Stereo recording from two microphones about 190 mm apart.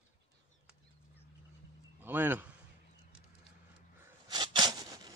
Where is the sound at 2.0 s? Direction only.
10° right (ahead or behind).